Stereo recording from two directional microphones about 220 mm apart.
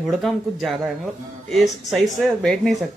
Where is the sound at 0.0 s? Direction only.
Centre (ahead or behind).